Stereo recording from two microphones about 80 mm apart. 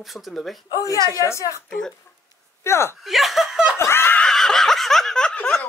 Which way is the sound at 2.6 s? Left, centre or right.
Left.